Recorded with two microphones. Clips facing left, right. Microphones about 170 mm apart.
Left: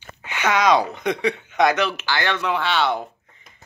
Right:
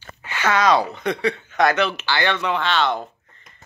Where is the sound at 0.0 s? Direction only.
15° left (ahead or behind).